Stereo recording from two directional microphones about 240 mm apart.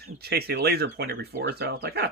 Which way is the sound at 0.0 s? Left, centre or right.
Right.